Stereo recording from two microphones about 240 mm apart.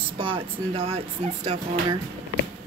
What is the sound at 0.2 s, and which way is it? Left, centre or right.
Speech, right.